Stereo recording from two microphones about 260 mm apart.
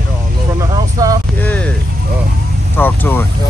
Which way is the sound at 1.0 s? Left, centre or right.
Centre.